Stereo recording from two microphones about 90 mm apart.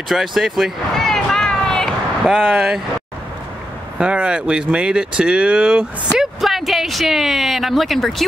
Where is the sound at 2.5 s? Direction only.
10° right (ahead or behind).